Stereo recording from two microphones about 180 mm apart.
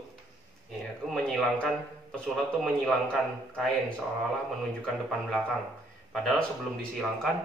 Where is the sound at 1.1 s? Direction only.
5° left (ahead or behind).